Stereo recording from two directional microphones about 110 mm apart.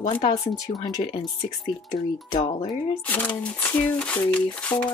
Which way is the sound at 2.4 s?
55° left (ahead or behind).